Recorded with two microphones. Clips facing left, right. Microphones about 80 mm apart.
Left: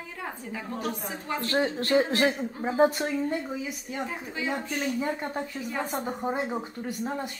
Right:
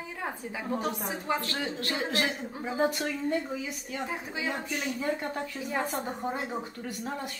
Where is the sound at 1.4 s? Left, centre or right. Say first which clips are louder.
Left 7 dB; left.